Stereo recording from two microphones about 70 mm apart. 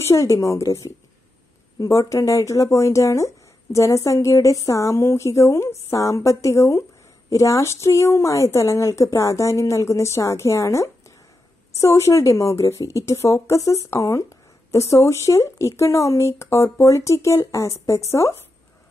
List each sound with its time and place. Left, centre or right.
0.0 s speech: left